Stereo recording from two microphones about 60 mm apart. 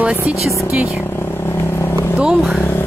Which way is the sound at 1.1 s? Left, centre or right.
Left.